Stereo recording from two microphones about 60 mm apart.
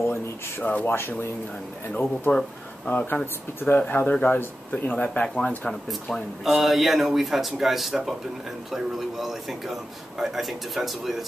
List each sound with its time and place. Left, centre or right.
0.8 s speech: left; by 5.8 s centre
6.4 s a man's voice: centre